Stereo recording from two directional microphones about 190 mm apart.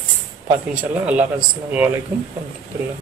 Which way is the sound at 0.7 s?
5° right (ahead or behind).